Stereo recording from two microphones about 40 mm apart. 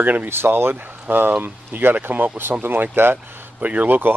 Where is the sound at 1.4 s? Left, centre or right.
Right.